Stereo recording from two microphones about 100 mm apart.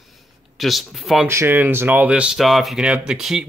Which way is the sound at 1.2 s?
20° right (ahead or behind).